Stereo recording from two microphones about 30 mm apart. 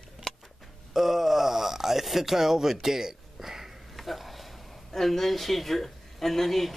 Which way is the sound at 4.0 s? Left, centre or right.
Centre.